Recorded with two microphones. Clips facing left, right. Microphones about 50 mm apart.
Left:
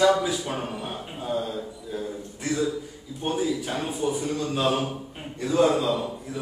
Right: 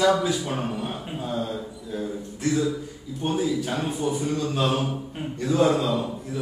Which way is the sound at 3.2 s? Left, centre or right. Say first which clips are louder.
Right 2 dB; centre.